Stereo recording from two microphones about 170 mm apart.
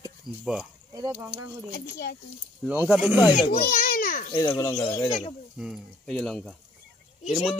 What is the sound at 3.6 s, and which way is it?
Speech, 55° left (ahead or behind).